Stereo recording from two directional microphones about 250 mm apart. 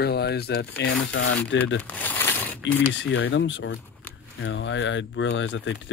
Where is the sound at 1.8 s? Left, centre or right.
Centre.